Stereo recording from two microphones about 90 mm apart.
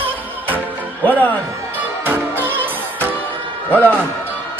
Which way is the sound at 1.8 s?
20° right (ahead or behind).